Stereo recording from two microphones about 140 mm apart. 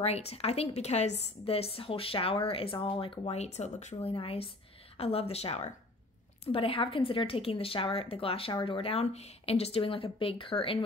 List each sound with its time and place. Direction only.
0.0 s a woman's voice: 45° left (ahead or behind)
4.1 s a woman's voice: 40° left (ahead or behind)